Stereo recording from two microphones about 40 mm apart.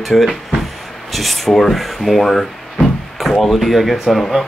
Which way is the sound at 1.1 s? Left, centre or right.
Centre.